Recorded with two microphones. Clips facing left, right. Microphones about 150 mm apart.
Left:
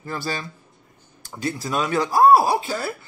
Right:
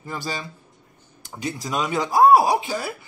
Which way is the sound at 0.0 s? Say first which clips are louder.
Left 2 dB; 15° right (ahead or behind).